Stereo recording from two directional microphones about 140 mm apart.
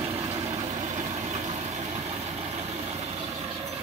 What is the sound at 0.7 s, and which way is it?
Vehicle, 45° right (ahead or behind).